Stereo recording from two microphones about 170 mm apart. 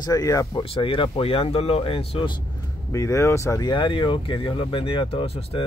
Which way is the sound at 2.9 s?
15° left (ahead or behind).